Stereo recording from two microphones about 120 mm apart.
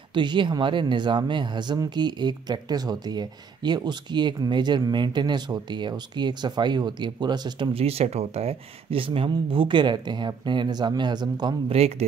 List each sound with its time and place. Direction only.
0.1 s speech: 40° right (ahead or behind)
11.7 s speech: 55° right (ahead or behind)